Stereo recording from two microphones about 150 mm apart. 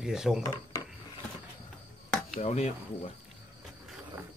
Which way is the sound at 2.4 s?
50° left (ahead or behind).